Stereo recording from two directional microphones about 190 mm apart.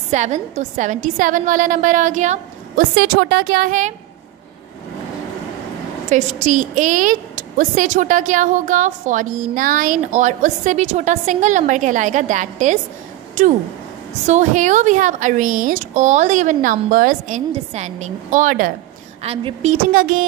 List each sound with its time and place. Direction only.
0.1 s a woman's voice: 40° right (ahead or behind)
6.0 s a woman's voice: 40° right (ahead or behind)
19.2 s a woman's voice: 30° right (ahead or behind); by 20.2 s 45° right (ahead or behind)